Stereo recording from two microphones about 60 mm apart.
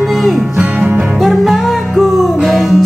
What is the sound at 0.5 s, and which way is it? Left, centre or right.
Music, centre.